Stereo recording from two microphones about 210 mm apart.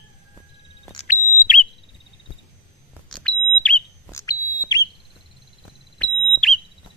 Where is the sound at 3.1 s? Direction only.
5° left (ahead or behind).